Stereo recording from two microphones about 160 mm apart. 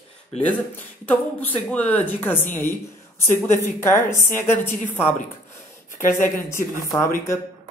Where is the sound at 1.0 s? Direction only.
10° left (ahead or behind).